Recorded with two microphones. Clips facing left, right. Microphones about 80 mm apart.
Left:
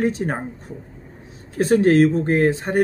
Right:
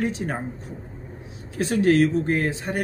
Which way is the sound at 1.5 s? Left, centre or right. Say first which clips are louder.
Left 4 dB; left.